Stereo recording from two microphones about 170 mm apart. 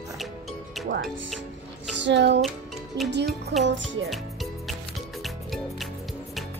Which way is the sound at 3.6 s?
90° right.